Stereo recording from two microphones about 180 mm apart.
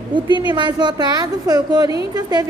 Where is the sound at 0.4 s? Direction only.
25° right (ahead or behind).